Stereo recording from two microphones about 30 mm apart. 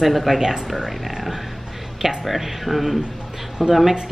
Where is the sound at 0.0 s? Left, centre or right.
Centre.